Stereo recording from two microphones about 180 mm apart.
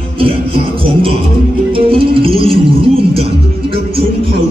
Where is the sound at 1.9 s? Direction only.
30° right (ahead or behind).